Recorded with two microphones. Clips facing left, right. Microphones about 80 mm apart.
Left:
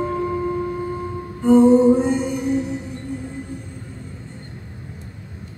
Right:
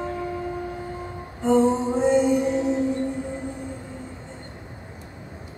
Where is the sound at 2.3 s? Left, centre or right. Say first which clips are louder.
Right 1 dB; right.